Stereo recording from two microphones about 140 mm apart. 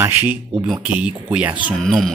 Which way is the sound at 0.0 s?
15° right (ahead or behind).